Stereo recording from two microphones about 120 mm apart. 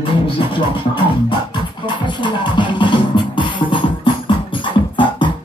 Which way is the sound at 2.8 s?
40° left (ahead or behind).